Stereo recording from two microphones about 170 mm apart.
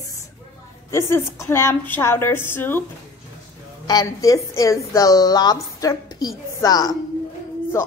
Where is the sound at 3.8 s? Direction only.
20° left (ahead or behind).